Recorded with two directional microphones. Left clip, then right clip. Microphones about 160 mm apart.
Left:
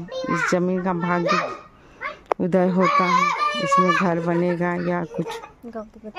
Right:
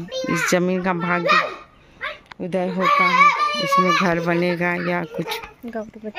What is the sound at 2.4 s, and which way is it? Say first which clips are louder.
Speech: left 2 dB; 55° left (ahead or behind).